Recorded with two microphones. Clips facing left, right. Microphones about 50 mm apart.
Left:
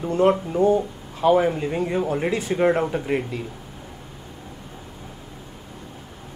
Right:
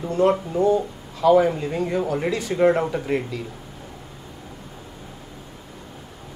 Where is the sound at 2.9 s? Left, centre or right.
Centre.